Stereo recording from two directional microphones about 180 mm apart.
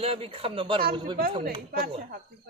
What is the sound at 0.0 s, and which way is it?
Speech, 30° right (ahead or behind).